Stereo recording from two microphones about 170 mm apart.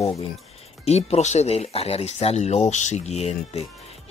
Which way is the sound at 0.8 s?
40° left (ahead or behind).